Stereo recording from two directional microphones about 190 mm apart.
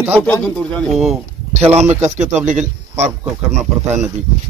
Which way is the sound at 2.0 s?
40° right (ahead or behind).